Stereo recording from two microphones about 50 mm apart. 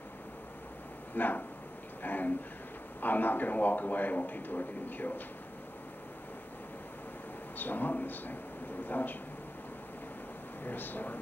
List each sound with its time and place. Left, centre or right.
1.1 s a man's voice: left
7.5 s a man's voice: left
10.6 s a man's voice: left